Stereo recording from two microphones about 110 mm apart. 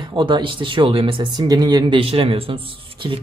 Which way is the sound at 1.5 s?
35° right (ahead or behind).